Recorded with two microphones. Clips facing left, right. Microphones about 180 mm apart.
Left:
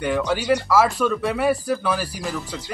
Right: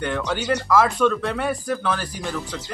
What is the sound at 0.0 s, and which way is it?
Speech, 5° left (ahead or behind).